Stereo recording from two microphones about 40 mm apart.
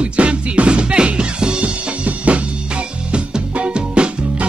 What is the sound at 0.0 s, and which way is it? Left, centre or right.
Music, right.